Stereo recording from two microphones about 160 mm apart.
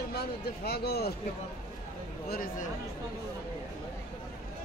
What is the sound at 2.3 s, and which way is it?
Speech, 65° left (ahead or behind).